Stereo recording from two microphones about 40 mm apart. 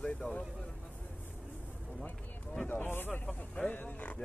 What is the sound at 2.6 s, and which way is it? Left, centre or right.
Speech, left.